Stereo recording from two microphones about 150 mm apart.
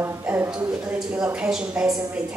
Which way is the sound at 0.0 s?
15° right (ahead or behind).